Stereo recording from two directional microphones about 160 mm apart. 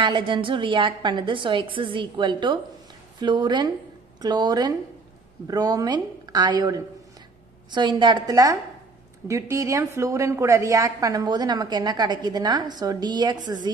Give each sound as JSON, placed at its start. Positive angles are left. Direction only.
{"t": 0.0, "sound": "a woman's voice", "side_deg": -30}